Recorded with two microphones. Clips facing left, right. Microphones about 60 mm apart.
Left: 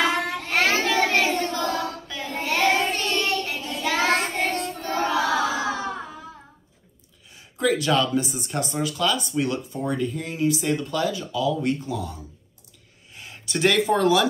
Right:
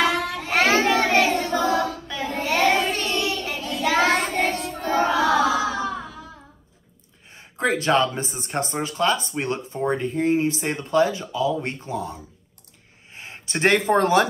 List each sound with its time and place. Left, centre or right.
0.3 s child singing: centre
5.6 s a sound: left
7.3 s speech: right